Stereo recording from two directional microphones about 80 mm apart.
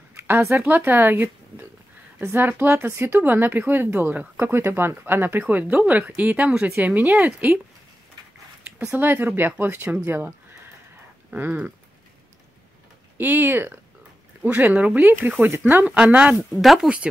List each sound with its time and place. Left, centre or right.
0.1 s speech: right
8.9 s speech: right
13.2 s speech: right
16.5 s speech: centre